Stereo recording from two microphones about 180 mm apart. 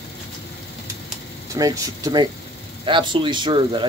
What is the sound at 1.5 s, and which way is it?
Speech, 20° right (ahead or behind).